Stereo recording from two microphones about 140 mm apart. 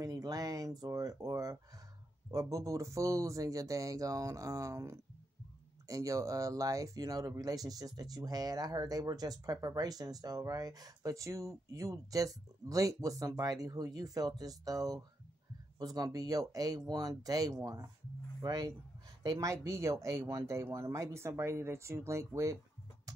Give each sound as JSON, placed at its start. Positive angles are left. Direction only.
{"t": 0.0, "sound": "speech", "side_deg": -25}